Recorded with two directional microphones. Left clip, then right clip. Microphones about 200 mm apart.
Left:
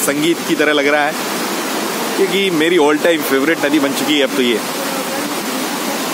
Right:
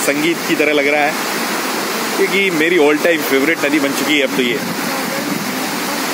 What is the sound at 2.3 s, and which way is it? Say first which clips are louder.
Speech: right 1 dB; 10° left (ahead or behind).